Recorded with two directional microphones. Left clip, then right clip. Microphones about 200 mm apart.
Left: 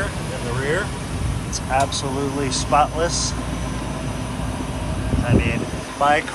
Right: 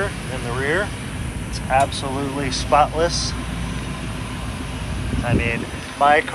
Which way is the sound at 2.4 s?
20° left (ahead or behind).